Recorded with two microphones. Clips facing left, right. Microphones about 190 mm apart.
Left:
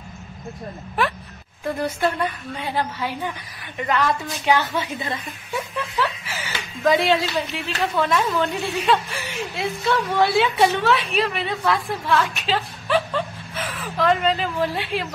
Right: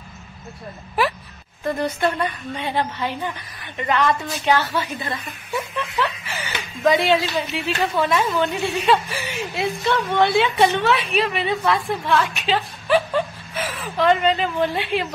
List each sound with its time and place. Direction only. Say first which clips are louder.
1.0 s speech: right 2 dB; 5° right (ahead or behind)
1.6 s a woman's voice: right 1 dB; 10° left (ahead or behind)
4.5 s a woman's voice: even; 20° left (ahead or behind)
5.9 s speech: even; centre (ahead or behind)